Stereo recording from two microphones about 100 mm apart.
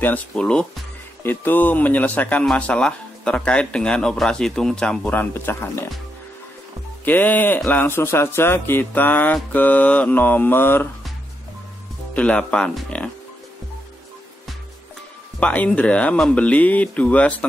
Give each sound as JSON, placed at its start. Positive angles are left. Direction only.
{"t": 0.0, "sound": "speech", "side_deg": 15}
{"t": 1.2, "sound": "speech", "side_deg": 20}
{"t": 5.1, "sound": "speech", "side_deg": 20}
{"t": 7.1, "sound": "speech", "side_deg": 20}
{"t": 12.1, "sound": "speech", "side_deg": 10}
{"t": 15.4, "sound": "speech", "side_deg": 15}